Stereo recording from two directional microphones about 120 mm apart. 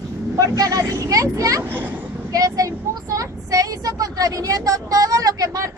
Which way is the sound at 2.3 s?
30° right (ahead or behind).